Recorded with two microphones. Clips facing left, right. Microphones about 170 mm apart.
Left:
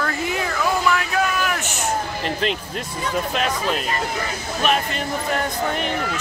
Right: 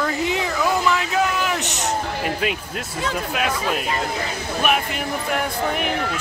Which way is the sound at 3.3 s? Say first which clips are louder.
Even; 5° right (ahead or behind).